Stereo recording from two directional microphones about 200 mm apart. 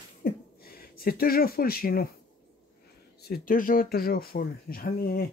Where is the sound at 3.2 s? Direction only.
45° left (ahead or behind).